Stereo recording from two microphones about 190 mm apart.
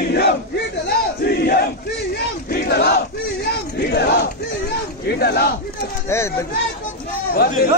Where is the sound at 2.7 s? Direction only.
60° left (ahead or behind).